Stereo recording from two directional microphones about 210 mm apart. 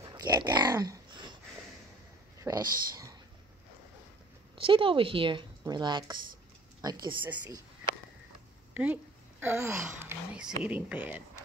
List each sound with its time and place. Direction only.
0.0 s a sound: 20° right (ahead or behind)
2.4 s speech: 15° right (ahead or behind)
4.6 s a woman's voice: 25° right (ahead or behind)
8.7 s a woman's voice: 10° right (ahead or behind)